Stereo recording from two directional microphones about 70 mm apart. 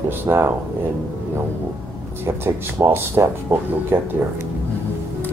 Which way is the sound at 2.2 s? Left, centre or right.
Right.